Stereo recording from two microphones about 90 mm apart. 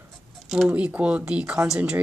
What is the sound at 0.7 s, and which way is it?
Speech, 15° right (ahead or behind).